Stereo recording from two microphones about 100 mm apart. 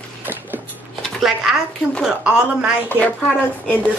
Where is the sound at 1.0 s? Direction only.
Centre (ahead or behind).